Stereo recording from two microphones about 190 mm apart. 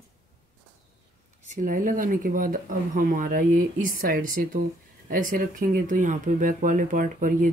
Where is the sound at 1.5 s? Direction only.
45° right (ahead or behind).